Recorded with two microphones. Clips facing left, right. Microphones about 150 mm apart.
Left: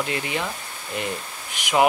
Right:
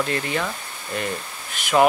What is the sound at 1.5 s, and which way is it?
Speech, 15° left (ahead or behind).